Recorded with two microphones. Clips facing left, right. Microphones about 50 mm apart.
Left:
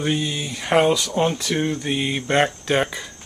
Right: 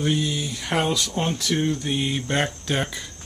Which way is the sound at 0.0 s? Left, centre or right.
Left.